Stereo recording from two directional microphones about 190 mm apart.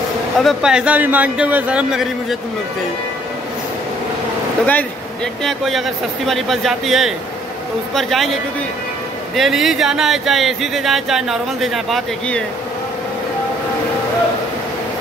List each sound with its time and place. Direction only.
0.4 s speech: centre (ahead or behind)
4.6 s speech: 5° left (ahead or behind)